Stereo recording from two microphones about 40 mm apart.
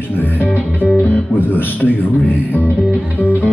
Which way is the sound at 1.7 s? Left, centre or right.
Left.